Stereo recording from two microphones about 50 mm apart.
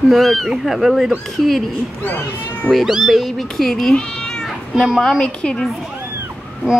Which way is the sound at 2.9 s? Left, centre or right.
Centre.